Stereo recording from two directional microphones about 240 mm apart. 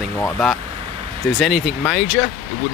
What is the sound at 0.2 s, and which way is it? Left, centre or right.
Speech, centre.